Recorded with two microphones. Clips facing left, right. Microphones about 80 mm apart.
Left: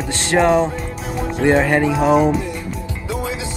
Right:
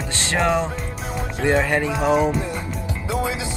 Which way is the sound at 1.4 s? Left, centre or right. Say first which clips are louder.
Left 5 dB; left.